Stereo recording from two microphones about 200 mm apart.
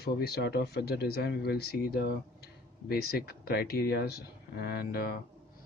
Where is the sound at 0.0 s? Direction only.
50° left (ahead or behind).